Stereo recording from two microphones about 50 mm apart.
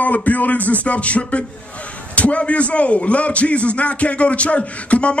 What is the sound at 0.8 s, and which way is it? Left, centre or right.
Speech, left.